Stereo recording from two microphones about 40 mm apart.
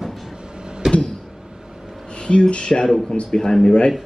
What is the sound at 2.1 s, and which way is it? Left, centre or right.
Speech, left.